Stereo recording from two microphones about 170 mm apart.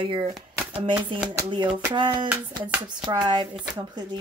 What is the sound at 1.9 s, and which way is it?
Speech, 25° right (ahead or behind).